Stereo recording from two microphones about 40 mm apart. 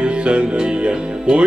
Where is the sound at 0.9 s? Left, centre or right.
Right.